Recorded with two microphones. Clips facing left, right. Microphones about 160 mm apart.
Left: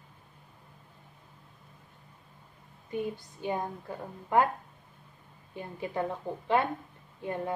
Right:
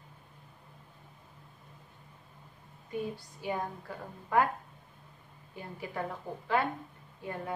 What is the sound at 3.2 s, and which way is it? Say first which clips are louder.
Speech: left 2 dB; 20° left (ahead or behind).